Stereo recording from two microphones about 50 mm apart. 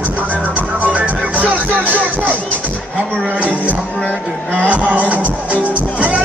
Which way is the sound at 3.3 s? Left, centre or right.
Right.